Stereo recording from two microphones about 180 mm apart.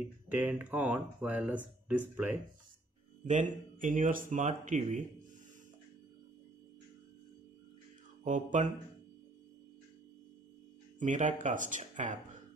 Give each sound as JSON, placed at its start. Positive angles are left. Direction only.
{"t": 0.3, "sound": "speech", "side_deg": -10}
{"t": 3.3, "sound": "speech", "side_deg": -45}
{"t": 8.2, "sound": "mantra", "side_deg": -45}
{"t": 11.0, "sound": "speech", "side_deg": -45}